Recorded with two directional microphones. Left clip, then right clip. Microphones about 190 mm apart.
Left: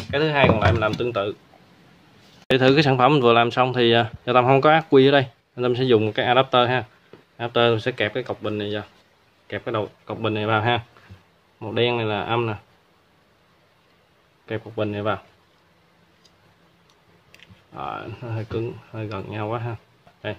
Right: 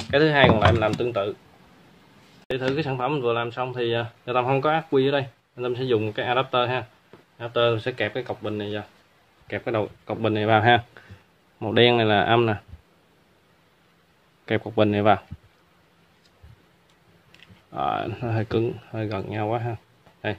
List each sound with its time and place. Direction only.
0.1 s speech: 20° right (ahead or behind); by 1.1 s centre (ahead or behind)
2.5 s speech: 40° left (ahead or behind); by 8.8 s 20° left (ahead or behind)
9.5 s speech: 5° right (ahead or behind)
14.4 s speech: 30° right (ahead or behind)
17.7 s speech: 25° right (ahead or behind); by 19.8 s 5° right (ahead or behind)